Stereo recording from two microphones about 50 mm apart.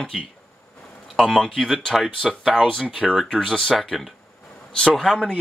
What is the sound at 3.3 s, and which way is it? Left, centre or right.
Speech, centre.